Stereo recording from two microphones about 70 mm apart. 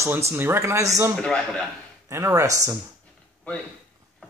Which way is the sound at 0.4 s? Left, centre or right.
Right.